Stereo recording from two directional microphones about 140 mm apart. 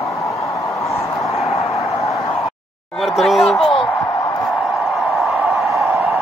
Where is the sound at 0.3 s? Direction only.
20° left (ahead or behind).